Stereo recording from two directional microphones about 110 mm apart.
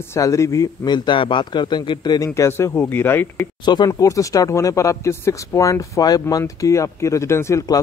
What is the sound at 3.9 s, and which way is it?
Speech, 30° left (ahead or behind).